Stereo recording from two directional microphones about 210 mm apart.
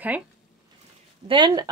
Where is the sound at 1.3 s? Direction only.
20° right (ahead or behind).